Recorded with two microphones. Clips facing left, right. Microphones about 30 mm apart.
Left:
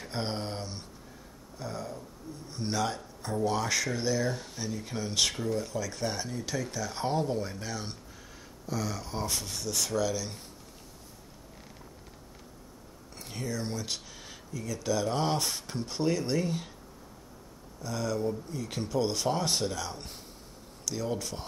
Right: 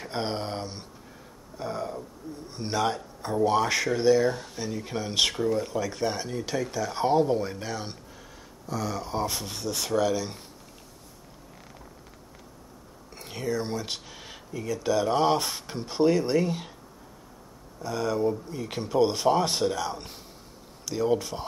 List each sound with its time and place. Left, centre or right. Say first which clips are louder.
0.0 s speech: right 4 dB; centre
1.6 s a sound: right 6 dB; right
2.5 s speech: right 4 dB; centre
13.2 s speech: right 6 dB; centre
17.8 s speech: right 5 dB; right